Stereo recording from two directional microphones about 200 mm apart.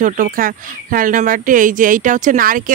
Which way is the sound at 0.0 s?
40° right (ahead or behind).